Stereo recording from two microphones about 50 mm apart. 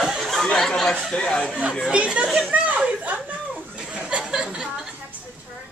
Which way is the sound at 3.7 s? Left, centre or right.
Right.